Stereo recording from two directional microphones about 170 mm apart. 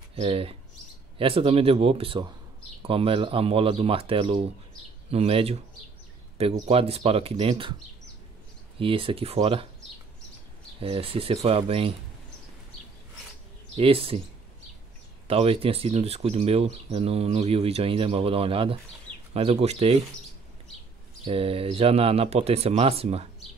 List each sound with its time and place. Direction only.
0.1 s speech: 35° right (ahead or behind)
8.7 s speech: 30° right (ahead or behind)
10.8 s speech: 35° right (ahead or behind)
13.7 s speech: 35° right (ahead or behind)
15.2 s speech: 35° right (ahead or behind)
21.2 s speech: 35° right (ahead or behind)